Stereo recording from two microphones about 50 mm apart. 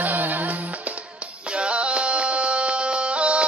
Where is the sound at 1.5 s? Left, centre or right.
Right.